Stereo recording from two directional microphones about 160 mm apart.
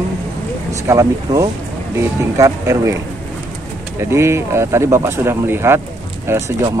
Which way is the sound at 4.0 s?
15° right (ahead or behind).